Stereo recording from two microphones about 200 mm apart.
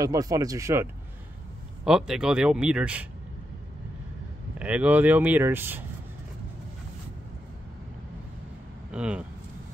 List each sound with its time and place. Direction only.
0.0 s speech: 15° right (ahead or behind)
1.9 s speech: centre (ahead or behind)
4.6 s speech: 5° right (ahead or behind)
8.9 s speech: 5° right (ahead or behind)